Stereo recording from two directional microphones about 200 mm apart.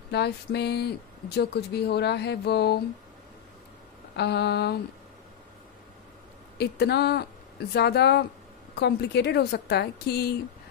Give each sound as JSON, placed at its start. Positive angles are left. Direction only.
{"t": 0.1, "sound": "speech", "side_deg": 55}
{"t": 4.2, "sound": "speech", "side_deg": 55}
{"t": 6.6, "sound": "speech", "side_deg": 55}